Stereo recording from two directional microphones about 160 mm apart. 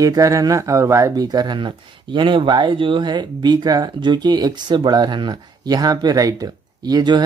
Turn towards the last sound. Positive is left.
turn(degrees=-25)  # may be behind; listen again after turning